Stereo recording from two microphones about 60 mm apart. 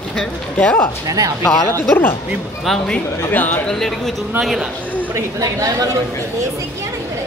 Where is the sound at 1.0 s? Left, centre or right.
Right.